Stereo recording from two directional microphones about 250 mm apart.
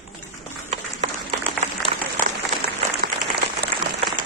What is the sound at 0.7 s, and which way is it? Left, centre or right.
Applause, right.